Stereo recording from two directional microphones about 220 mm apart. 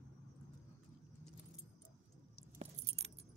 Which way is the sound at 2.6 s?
30° right (ahead or behind).